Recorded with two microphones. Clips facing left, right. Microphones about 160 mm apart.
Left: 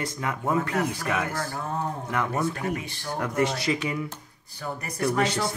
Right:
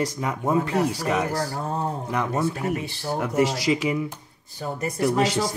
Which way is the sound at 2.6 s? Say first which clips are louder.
Right 3 dB; 30° right (ahead or behind).